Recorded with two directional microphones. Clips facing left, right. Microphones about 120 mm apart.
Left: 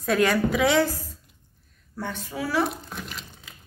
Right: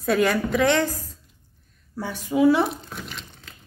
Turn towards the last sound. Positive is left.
turn(degrees=0)  # may be behind; listen again after turning